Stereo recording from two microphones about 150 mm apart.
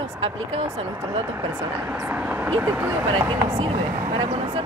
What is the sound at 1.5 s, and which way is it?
Speech, 10° right (ahead or behind).